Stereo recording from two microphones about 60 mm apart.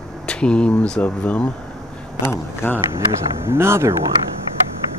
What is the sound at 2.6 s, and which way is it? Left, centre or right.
Speech, left.